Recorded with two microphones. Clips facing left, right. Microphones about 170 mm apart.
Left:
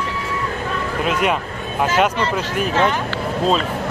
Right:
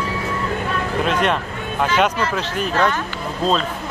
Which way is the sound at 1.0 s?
5° left (ahead or behind).